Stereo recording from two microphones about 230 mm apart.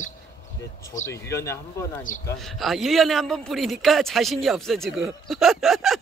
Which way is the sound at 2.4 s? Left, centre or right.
Centre.